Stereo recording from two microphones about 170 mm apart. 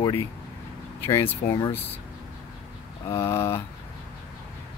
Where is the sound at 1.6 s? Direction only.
35° left (ahead or behind).